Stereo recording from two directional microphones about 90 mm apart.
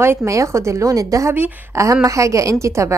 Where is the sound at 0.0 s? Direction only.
30° right (ahead or behind).